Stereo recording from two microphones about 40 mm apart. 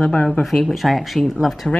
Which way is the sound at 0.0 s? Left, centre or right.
Left.